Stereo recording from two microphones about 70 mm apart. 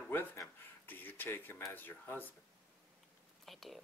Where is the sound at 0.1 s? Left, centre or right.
Left.